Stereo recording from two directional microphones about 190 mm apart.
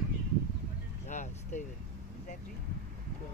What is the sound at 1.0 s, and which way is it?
Vehicle, 40° left (ahead or behind).